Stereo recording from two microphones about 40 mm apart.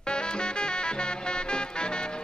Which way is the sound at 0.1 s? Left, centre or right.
Left.